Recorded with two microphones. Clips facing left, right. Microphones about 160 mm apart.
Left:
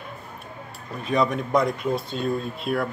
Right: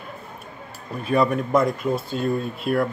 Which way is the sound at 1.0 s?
5° right (ahead or behind).